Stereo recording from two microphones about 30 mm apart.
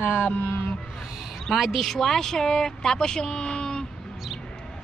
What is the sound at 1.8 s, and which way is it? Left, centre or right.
Music, centre.